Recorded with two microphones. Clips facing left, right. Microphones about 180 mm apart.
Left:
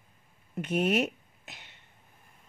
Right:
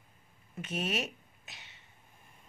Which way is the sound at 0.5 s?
60° left (ahead or behind).